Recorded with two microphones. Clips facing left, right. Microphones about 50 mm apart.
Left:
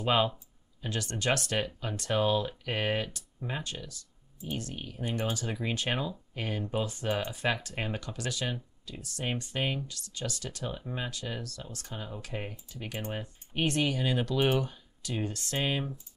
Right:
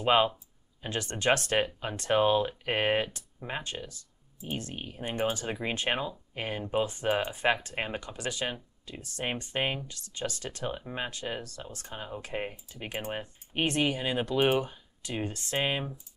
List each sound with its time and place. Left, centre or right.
0.0 s speech: right